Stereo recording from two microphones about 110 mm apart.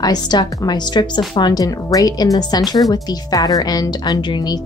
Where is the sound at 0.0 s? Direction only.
40° left (ahead or behind).